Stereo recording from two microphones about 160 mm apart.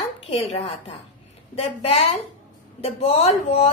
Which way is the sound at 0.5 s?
35° left (ahead or behind).